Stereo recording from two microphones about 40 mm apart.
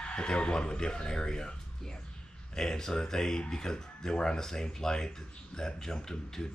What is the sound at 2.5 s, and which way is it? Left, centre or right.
Speech, centre.